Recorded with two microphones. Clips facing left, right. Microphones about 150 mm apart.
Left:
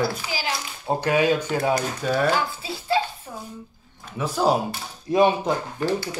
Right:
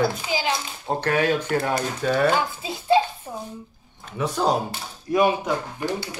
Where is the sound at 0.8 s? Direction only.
10° left (ahead or behind).